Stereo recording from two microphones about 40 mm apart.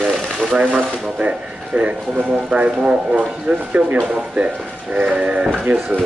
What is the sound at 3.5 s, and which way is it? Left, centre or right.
Speech, centre.